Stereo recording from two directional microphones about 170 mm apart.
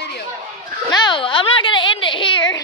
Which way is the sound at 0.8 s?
25° left (ahead or behind).